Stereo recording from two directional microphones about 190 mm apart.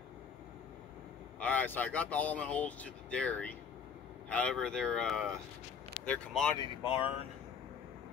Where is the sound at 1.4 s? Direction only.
10° left (ahead or behind).